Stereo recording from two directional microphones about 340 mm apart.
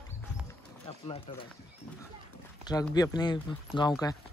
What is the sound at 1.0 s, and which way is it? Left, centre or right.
Speech, centre.